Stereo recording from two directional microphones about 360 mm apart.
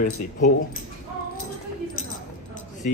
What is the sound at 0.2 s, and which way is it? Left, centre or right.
Speech, left.